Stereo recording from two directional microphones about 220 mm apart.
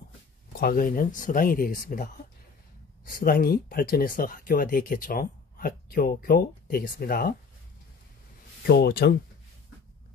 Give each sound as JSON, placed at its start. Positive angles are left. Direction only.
{"t": 0.6, "sound": "speech", "side_deg": 40}
{"t": 3.1, "sound": "speech", "side_deg": 40}
{"t": 8.6, "sound": "speech", "side_deg": 45}